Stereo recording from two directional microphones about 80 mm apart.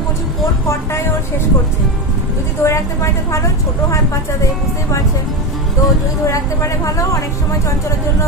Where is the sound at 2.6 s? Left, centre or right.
Left.